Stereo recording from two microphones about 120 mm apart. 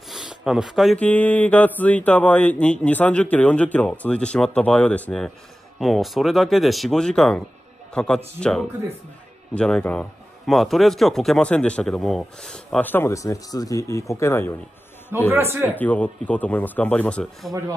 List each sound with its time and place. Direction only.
0.1 s a sound: 5° right (ahead or behind)
0.9 s a man's voice: 10° left (ahead or behind)
15.3 s a man's voice: 20° right (ahead or behind)
15.7 s a man's voice: 10° left (ahead or behind)